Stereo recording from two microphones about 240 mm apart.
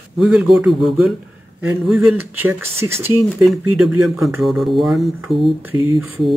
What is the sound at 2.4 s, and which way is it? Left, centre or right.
Speech, centre.